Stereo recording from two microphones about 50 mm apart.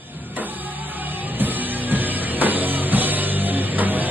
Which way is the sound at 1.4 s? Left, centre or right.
Right.